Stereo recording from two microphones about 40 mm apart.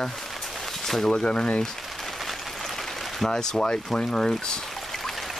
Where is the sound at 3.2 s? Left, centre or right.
Centre.